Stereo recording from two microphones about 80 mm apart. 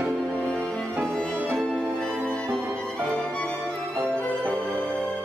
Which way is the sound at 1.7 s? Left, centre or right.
Centre.